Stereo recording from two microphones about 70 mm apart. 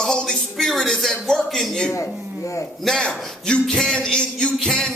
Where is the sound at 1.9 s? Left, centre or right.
Left.